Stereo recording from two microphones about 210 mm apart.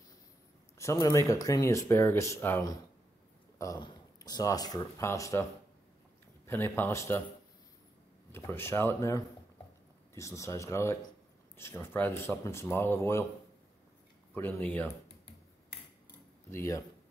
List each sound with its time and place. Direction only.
0.7 s speech: 15° left (ahead or behind)
8.3 s speech: 10° left (ahead or behind)
14.3 s speech: 5° left (ahead or behind)
16.4 s speech: 10° left (ahead or behind)